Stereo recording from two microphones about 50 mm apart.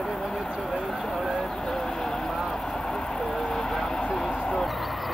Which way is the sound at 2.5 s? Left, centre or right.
Centre.